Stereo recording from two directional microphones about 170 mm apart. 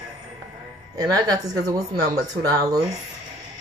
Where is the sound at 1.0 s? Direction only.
20° right (ahead or behind).